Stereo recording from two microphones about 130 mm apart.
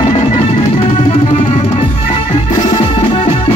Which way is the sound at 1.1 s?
45° left (ahead or behind).